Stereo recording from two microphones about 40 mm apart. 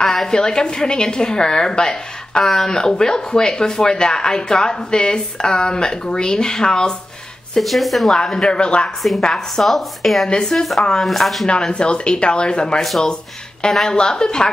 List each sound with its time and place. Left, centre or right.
0.0 s speech: centre
7.5 s a woman's voice: centre
8.2 s speech: centre
9.2 s a woman's voice: centre
11.4 s speech: left